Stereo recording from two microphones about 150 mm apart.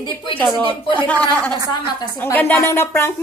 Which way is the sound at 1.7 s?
30° left (ahead or behind).